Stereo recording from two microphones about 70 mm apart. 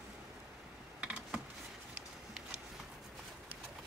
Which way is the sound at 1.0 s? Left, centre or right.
Centre.